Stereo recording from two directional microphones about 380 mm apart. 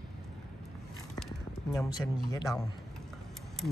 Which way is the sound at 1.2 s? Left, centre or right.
Centre.